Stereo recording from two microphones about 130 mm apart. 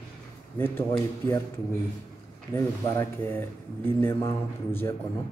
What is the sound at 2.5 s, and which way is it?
Speech, 20° left (ahead or behind).